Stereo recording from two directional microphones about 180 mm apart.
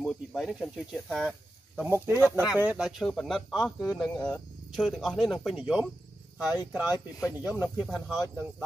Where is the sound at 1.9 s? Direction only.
10° right (ahead or behind).